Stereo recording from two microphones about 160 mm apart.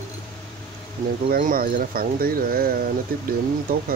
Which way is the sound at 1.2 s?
70° right (ahead or behind).